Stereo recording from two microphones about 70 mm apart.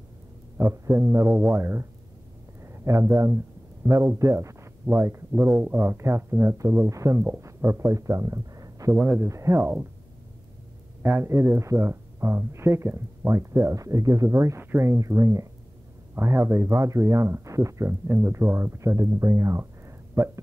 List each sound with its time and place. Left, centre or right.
0.6 s speech: right
2.6 s speech: right
7.2 s speech: right
9.2 s speech: right
11.0 s speech: right
14.6 s speech: right
14.9 s speech: right
18.0 s speech: right